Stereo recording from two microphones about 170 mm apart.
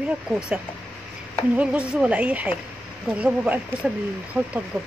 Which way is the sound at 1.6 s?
5° right (ahead or behind).